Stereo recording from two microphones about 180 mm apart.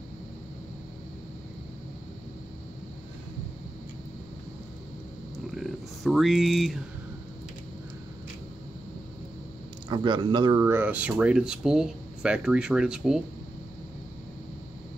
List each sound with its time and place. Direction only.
5.5 s speech: centre (ahead or behind)
9.8 s speech: 25° right (ahead or behind)
10.6 s speech: 15° right (ahead or behind)